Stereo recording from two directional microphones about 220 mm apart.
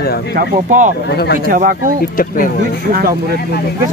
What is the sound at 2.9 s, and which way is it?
Speech, 45° right (ahead or behind).